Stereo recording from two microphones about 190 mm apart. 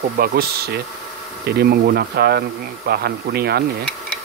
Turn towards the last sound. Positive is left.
turn(degrees=-55)  # may be behind; listen again after turning